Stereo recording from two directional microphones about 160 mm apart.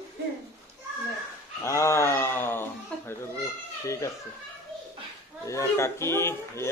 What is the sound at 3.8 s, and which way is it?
Speech, 20° left (ahead or behind).